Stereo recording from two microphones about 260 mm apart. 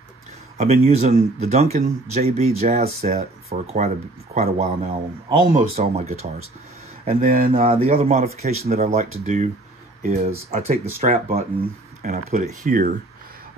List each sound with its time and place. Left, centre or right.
0.6 s speech: right
7.5 s speech: right